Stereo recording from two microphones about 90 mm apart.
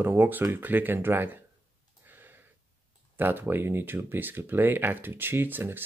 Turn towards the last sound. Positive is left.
turn(degrees=-20)  # may be behind; listen again after turning